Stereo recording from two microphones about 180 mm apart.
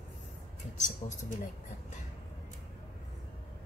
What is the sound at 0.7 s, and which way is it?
Speech, 45° left (ahead or behind).